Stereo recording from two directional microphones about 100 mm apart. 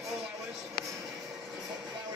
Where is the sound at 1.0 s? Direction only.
5° right (ahead or behind).